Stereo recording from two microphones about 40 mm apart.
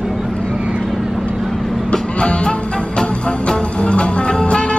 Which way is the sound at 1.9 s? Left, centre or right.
Left.